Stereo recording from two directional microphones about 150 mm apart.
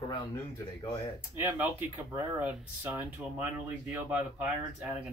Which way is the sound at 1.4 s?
10° right (ahead or behind).